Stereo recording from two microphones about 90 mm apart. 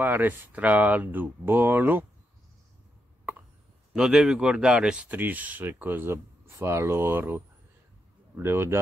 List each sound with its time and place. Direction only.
0.0 s speech: 20° right (ahead or behind)
3.9 s speech: 5° right (ahead or behind); by 8.7 s 25° right (ahead or behind)